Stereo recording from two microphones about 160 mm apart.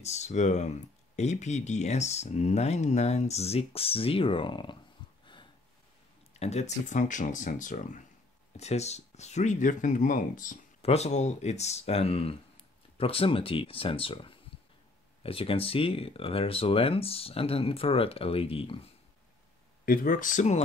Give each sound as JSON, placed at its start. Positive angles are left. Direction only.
{"t": 0.0, "sound": "speech", "side_deg": 45}
{"t": 5.2, "sound": "a sound", "side_deg": 30}
{"t": 6.3, "sound": "speech", "side_deg": 40}
{"t": 10.8, "sound": "speech", "side_deg": 40}
{"t": 19.8, "sound": "speech", "side_deg": 60}